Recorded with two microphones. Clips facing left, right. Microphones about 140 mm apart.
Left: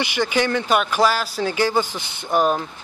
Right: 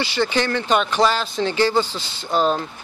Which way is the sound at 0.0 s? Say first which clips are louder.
Even; 15° left (ahead or behind).